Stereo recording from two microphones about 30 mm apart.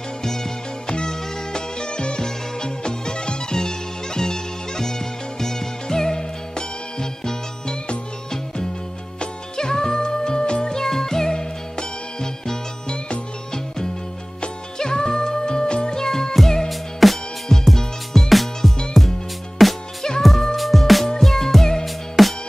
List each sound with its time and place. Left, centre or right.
0.2 s music: centre
9.2 s music: left
10.7 s music: centre
14.8 s music: left
16.6 s music: centre
17.5 s music: centre
20.2 s music: centre